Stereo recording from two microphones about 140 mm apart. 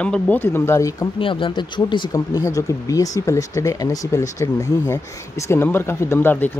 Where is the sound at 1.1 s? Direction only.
35° left (ahead or behind).